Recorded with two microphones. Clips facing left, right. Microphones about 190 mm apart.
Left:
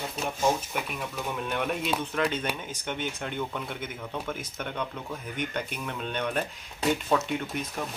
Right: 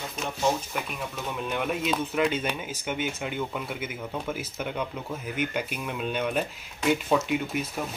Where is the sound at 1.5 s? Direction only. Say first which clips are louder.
Right 2 dB; centre (ahead or behind).